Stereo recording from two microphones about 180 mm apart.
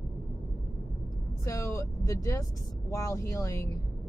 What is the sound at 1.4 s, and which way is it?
Speech, 15° left (ahead or behind).